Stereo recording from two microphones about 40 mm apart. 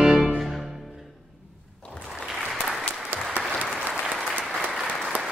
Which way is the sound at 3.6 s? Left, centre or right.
Right.